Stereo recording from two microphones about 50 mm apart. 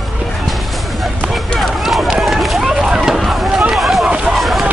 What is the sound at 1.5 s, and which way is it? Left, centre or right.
Run, centre.